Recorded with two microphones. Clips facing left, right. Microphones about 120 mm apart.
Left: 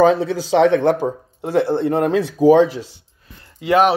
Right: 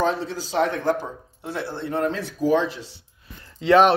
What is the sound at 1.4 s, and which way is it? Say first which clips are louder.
Speech: left 12 dB; 50° left (ahead or behind).